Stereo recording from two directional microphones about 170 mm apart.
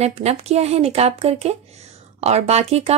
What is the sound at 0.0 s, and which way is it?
A woman's voice, 40° right (ahead or behind).